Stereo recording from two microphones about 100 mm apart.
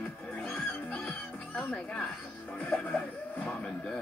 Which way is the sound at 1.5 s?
10° left (ahead or behind).